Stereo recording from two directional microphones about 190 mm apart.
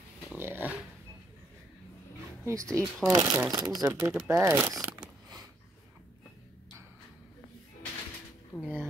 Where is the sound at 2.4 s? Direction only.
15° right (ahead or behind).